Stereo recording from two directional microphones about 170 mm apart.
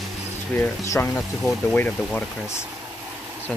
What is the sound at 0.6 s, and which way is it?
Speech, 15° left (ahead or behind).